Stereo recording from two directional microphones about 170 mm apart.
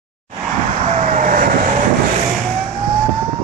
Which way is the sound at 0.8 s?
45° right (ahead or behind).